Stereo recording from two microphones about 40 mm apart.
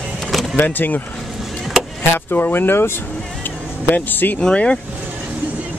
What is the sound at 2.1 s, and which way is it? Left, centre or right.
Speech, left.